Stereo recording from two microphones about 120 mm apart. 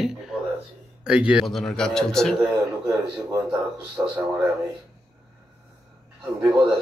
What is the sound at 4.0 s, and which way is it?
Speech, 20° right (ahead or behind).